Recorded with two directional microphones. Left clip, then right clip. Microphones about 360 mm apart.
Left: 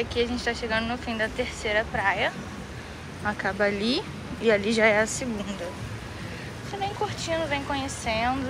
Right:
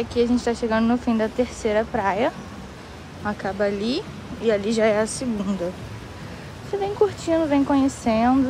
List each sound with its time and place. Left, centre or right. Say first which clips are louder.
0.0 s speech: right 5 dB; centre
6.8 s speech: right 8 dB; centre